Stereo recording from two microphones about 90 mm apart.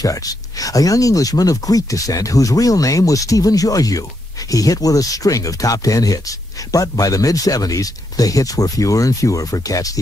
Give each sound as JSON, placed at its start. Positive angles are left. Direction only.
{"t": 0.0, "sound": "speech", "side_deg": 40}